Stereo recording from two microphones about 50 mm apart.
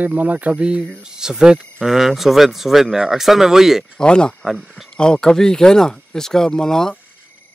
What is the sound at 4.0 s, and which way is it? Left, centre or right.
Speech, centre.